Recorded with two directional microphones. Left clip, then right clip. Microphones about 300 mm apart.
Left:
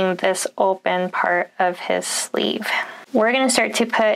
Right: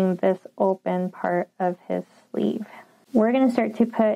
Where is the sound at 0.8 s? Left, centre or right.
Centre.